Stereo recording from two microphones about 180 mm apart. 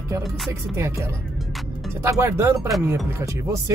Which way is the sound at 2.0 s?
15° right (ahead or behind).